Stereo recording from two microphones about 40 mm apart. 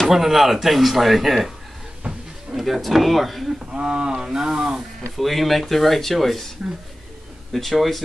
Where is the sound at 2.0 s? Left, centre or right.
Right.